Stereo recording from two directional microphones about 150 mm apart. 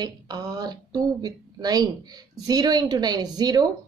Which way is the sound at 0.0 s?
25° right (ahead or behind).